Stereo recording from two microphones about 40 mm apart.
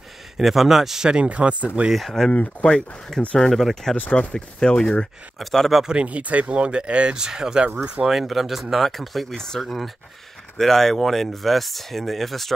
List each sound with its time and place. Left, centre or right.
0.4 s a man's voice: centre
1.0 s speech: right
2.0 s speech: centre
3.3 s speech: centre
4.1 s speech: left
5.4 s speech: centre
6.0 s speech: right; by 7.7 s centre
8.0 s speech: centre